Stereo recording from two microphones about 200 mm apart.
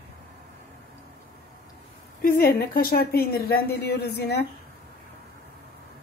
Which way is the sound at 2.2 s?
45° left (ahead or behind).